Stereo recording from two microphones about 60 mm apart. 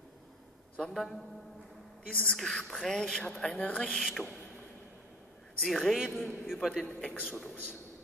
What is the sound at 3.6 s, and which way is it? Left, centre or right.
Speech, left.